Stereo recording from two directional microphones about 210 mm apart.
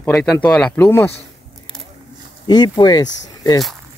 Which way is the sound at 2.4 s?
20° left (ahead or behind).